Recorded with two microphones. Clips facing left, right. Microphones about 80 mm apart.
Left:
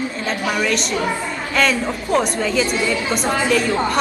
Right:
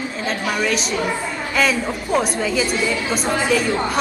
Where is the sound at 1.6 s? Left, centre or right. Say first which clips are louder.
Left 1 dB; centre.